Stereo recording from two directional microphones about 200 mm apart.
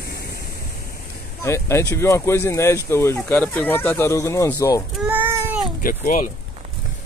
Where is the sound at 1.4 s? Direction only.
15° left (ahead or behind).